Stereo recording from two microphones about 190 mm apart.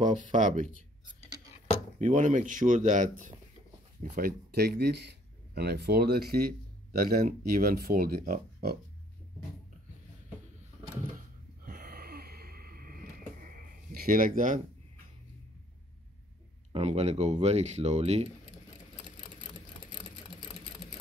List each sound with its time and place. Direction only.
0.3 s speech: 40° right (ahead or behind)
2.0 s speech: 40° right (ahead or behind)
4.6 s speech: 60° right (ahead or behind)
11.6 s a sound: 45° right (ahead or behind)
16.7 s speech: 35° right (ahead or behind)